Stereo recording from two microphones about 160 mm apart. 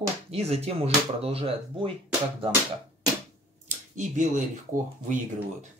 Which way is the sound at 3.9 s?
50° right (ahead or behind).